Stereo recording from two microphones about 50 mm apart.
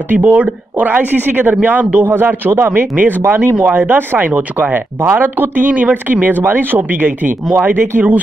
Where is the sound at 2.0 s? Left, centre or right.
Right.